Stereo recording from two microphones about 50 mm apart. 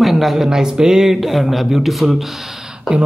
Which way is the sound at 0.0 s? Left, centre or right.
Centre.